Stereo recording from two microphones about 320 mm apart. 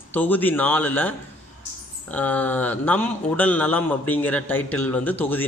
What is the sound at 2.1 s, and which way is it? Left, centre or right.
A man's voice, centre.